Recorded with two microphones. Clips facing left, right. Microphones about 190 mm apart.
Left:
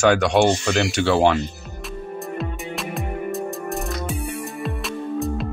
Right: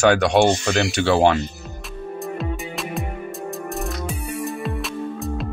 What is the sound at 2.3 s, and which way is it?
Music, centre (ahead or behind).